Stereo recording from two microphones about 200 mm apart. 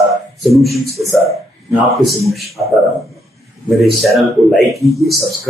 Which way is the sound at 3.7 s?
Centre (ahead or behind).